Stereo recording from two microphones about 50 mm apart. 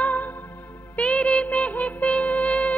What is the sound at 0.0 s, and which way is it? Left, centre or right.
Music, left.